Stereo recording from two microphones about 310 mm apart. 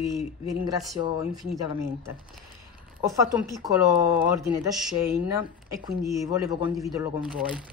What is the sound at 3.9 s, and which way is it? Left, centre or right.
Speech, left.